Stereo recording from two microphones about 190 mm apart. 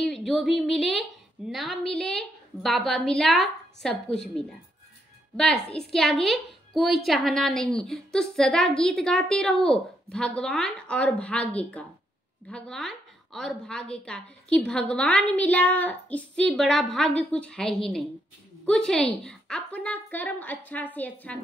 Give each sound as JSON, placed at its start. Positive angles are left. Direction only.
{"t": 0.0, "sound": "a woman's voice", "side_deg": 5}
{"t": 5.8, "sound": "a woman's voice", "side_deg": 0}